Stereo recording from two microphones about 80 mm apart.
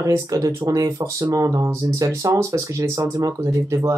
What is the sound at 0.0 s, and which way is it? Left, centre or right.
Speech, right.